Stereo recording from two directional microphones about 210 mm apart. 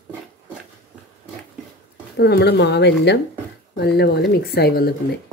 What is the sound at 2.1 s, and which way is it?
Speech, 50° left (ahead or behind).